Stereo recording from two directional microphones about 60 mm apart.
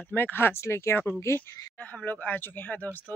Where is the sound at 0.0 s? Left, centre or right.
Left.